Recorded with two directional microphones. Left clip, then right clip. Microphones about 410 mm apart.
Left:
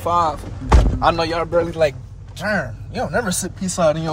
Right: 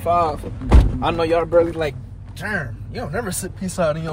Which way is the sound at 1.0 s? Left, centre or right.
Left.